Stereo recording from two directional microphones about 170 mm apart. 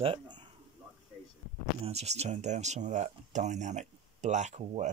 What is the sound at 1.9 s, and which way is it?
Speech, 40° right (ahead or behind).